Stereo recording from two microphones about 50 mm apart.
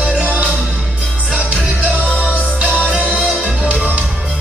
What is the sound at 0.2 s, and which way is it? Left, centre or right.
Music, right.